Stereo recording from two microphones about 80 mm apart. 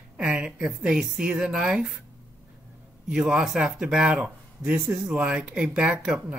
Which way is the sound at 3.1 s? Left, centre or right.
Centre.